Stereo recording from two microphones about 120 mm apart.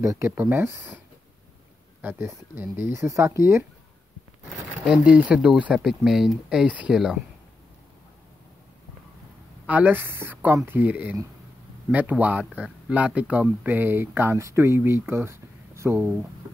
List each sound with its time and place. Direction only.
0.0 s speech: 25° right (ahead or behind)
4.8 s speech: 5° right (ahead or behind)
9.7 s speech: 15° right (ahead or behind)